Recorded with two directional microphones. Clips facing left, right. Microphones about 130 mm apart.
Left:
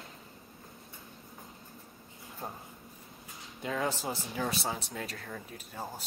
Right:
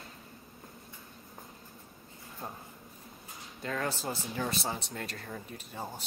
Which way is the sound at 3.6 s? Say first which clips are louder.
Left 2 dB; 15° left (ahead or behind).